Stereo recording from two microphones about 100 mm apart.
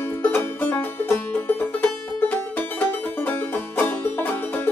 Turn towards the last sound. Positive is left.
turn(degrees=20)  # may be behind; listen again after turning